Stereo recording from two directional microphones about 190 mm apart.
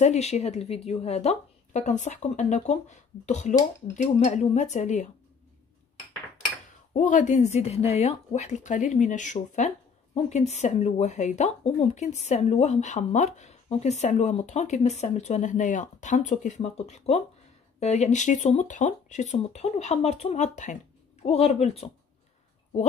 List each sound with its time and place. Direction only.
0.0 s speech: 35° left (ahead or behind)
6.9 s speech: 40° left (ahead or behind)